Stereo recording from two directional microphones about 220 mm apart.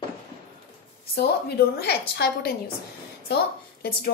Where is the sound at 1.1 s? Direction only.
45° left (ahead or behind).